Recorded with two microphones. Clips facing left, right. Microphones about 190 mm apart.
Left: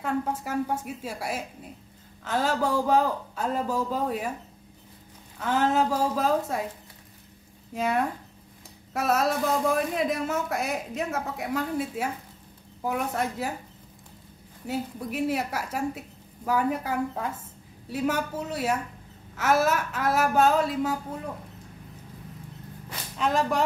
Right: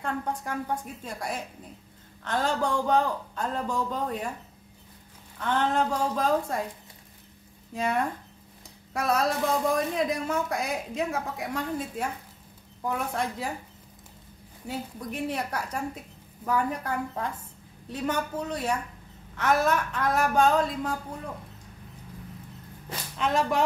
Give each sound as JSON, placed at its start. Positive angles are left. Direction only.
{"t": 0.0, "sound": "a woman's voice", "side_deg": 5}
{"t": 5.4, "sound": "a woman's voice", "side_deg": 5}
{"t": 7.7, "sound": "a woman's voice", "side_deg": 0}
{"t": 14.7, "sound": "a woman's voice", "side_deg": 5}
{"t": 23.1, "sound": "a woman's voice", "side_deg": 0}